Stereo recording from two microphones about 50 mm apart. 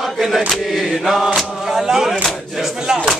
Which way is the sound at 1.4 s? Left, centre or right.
Centre.